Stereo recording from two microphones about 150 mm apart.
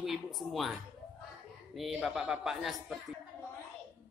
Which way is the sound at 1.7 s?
Centre (ahead or behind).